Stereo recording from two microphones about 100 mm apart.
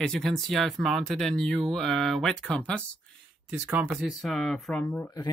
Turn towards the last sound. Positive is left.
turn(degrees=20)  # may be behind; listen again after turning